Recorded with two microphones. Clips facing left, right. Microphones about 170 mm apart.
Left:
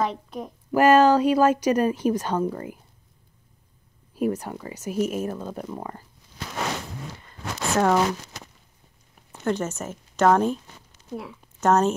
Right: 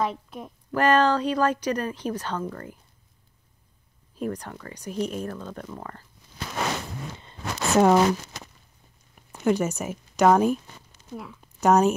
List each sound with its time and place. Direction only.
0.0 s a woman's voice: centre (ahead or behind)
0.7 s speech: 10° left (ahead or behind)
4.1 s speech: 10° left (ahead or behind)
7.2 s a sound: 20° right (ahead or behind)
9.4 s speech: 10° right (ahead or behind)
11.6 s speech: 10° right (ahead or behind)